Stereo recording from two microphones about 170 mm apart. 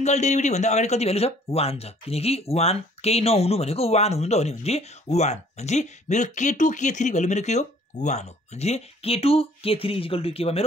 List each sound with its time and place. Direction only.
0.0 s speech: 40° left (ahead or behind)